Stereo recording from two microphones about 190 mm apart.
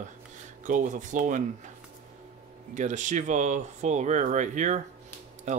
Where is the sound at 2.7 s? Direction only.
40° right (ahead or behind).